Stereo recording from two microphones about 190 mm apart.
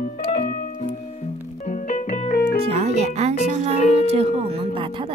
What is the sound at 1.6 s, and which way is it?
Music, 40° left (ahead or behind).